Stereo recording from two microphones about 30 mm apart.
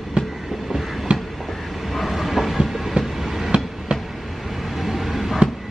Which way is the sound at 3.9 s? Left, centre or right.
Right.